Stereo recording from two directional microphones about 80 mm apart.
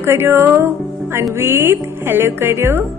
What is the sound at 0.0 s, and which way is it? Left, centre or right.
Speech, right.